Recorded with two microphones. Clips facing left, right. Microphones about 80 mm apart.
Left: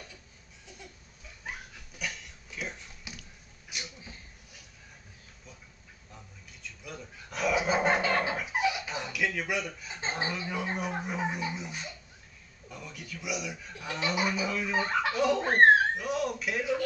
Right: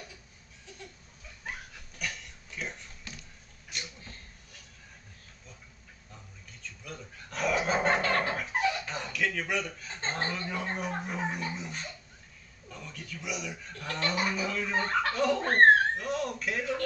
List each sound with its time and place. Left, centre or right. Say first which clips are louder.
2.0 s a sound: even; centre
6.6 s dog: left 1 dB; centre
12.6 s speech: left 1 dB; centre